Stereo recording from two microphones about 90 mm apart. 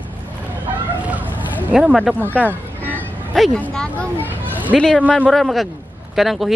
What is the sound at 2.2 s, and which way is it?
Speech, 20° right (ahead or behind).